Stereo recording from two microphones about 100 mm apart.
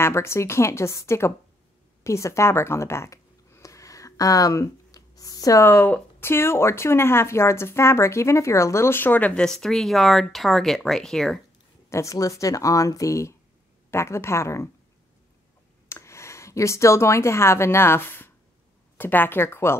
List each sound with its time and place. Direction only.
0.0 s speech: 25° left (ahead or behind)
2.0 s a sound: 30° left (ahead or behind)
5.6 s speech: 20° left (ahead or behind); by 11.4 s 5° left (ahead or behind)
11.9 s speech: 30° left (ahead or behind)
15.9 s speech: 30° left (ahead or behind)